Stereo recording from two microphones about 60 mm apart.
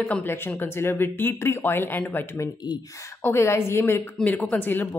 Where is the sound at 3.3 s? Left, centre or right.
Left.